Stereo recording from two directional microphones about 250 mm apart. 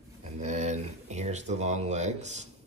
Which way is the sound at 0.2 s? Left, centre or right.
Right.